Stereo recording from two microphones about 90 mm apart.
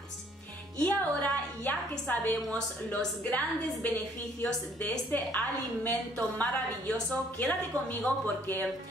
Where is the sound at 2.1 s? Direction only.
20° left (ahead or behind).